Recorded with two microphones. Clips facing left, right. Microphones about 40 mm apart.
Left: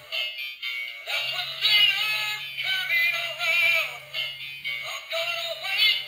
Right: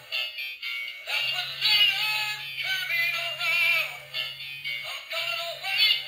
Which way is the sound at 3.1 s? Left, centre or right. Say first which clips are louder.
Left 2 dB; centre.